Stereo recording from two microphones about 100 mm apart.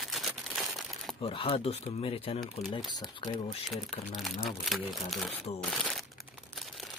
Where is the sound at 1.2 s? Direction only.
60° left (ahead or behind).